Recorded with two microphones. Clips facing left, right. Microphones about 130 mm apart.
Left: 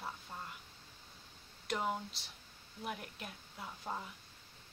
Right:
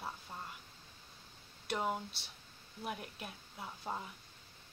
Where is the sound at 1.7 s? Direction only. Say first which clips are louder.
Even; 5° right (ahead or behind).